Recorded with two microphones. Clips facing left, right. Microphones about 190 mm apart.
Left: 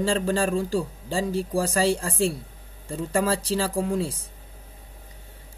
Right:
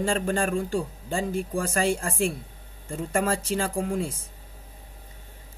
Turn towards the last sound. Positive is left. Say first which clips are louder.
# left 2 dB
turn(degrees=35)  # may be behind; listen again after turning